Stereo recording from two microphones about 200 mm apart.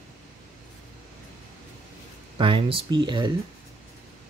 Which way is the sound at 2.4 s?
25° right (ahead or behind).